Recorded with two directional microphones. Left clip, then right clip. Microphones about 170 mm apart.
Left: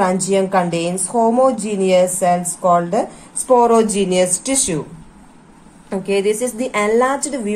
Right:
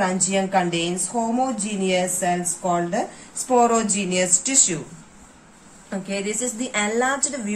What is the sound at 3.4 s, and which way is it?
Speech, 45° left (ahead or behind).